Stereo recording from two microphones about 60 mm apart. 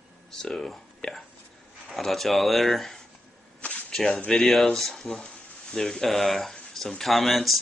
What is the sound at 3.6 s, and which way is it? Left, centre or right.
Whip, left.